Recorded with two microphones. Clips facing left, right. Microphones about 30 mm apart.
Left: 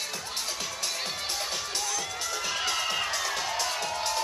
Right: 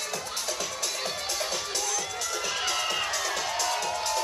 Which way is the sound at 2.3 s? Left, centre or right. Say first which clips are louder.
Even; centre.